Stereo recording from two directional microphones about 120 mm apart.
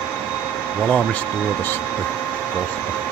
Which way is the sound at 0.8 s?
10° left (ahead or behind).